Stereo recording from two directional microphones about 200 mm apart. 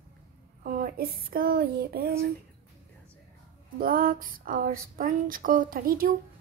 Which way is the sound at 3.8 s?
45° right (ahead or behind).